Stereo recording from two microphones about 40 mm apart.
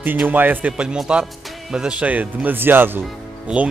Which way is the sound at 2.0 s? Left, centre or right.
Right.